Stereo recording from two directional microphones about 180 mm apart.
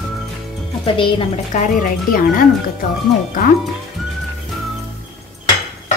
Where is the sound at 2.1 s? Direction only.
50° left (ahead or behind).